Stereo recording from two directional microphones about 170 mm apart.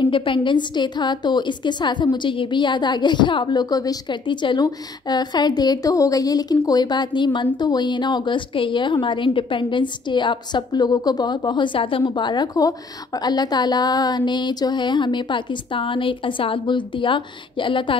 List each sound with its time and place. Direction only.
0.0 s a woman's voice: 30° left (ahead or behind)